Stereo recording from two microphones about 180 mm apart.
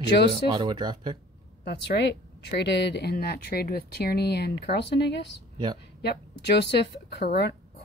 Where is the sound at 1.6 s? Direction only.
70° left (ahead or behind).